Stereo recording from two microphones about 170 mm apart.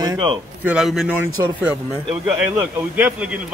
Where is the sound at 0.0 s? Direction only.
25° right (ahead or behind).